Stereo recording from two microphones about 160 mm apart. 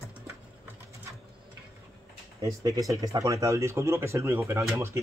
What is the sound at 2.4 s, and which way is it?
Speech, 20° right (ahead or behind).